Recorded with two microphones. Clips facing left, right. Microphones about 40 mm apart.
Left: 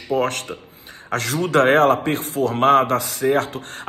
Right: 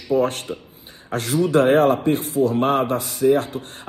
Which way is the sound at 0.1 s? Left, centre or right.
Left.